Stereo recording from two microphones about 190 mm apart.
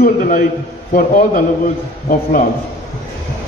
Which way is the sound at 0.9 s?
45° left (ahead or behind).